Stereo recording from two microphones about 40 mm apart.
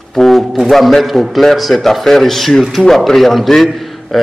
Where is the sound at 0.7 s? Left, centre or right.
Centre.